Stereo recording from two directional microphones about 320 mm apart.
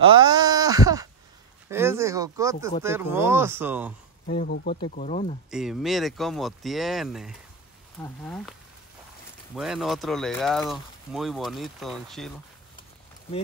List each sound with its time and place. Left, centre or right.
0.0 s a sound: centre
2.8 s speech: centre
4.3 s speech: left
5.5 s speech: centre
9.6 s speech: centre